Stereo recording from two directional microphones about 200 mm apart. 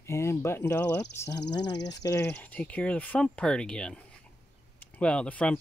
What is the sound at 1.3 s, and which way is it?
Speech, 60° left (ahead or behind).